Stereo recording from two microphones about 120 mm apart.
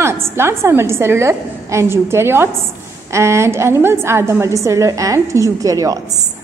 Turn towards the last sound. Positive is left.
turn(degrees=-30)  # may be behind; listen again after turning